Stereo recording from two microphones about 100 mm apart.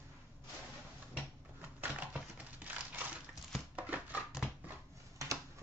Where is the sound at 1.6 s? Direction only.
20° right (ahead or behind).